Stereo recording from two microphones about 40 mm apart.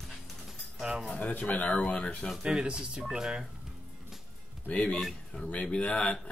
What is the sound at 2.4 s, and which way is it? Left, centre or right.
Speech, right.